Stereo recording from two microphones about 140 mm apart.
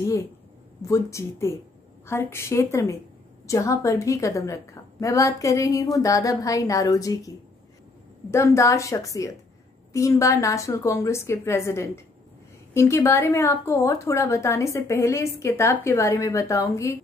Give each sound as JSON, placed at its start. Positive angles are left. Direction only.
{"t": 0.8, "sound": "a woman's voice", "side_deg": 20}